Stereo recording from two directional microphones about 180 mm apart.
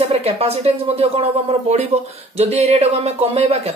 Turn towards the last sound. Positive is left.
turn(degrees=-35)  # may be behind; listen again after turning